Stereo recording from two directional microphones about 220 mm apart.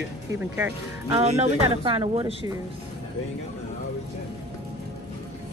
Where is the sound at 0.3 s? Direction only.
10° right (ahead or behind).